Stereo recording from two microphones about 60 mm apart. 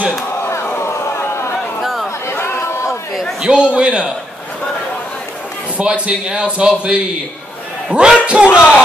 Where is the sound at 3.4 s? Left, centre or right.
Centre.